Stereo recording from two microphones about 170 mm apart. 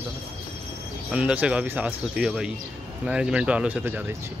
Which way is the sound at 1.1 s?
5° right (ahead or behind).